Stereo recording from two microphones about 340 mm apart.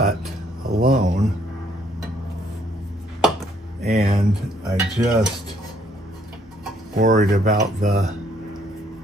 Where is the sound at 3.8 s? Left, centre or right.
Right.